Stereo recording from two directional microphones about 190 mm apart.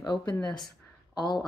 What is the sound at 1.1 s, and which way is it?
Speech, 20° left (ahead or behind).